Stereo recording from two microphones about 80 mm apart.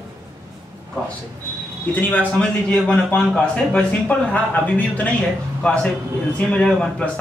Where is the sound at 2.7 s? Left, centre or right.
Centre.